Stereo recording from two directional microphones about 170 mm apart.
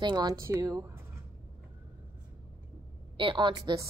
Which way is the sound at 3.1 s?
30° right (ahead or behind).